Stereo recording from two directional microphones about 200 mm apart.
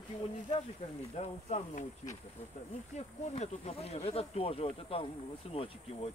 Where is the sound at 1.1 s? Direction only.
35° left (ahead or behind).